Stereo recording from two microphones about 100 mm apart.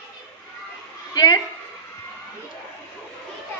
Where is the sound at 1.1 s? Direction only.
40° left (ahead or behind).